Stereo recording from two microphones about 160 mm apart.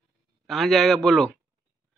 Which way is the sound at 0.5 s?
Centre (ahead or behind).